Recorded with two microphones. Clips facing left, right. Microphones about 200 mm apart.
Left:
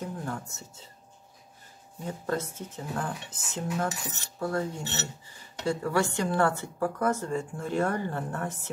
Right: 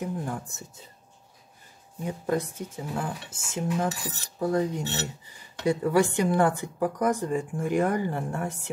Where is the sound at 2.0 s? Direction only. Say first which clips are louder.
Right 4 dB; 15° right (ahead or behind).